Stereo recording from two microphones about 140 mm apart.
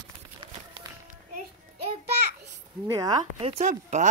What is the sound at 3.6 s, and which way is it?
Speech, 60° right (ahead or behind).